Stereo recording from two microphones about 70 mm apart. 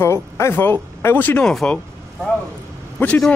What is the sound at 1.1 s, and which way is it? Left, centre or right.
Speech, left.